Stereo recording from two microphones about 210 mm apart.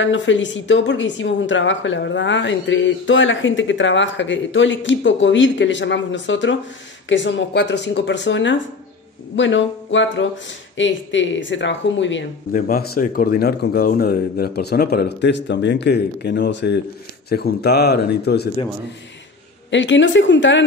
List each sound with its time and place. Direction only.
0.0 s a woman's voice: 65° left (ahead or behind)
12.5 s speech: 45° left (ahead or behind)
19.7 s a woman's voice: 60° left (ahead or behind)